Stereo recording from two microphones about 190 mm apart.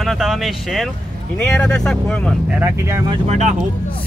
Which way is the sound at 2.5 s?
15° right (ahead or behind).